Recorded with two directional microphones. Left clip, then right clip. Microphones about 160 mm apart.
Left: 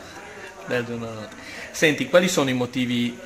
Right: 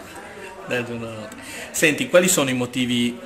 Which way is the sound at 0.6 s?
40° left (ahead or behind).